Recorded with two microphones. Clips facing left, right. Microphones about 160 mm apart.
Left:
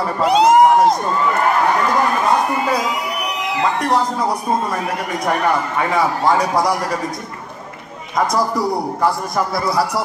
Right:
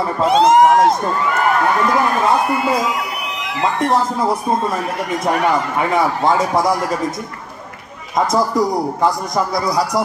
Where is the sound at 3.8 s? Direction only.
25° right (ahead or behind).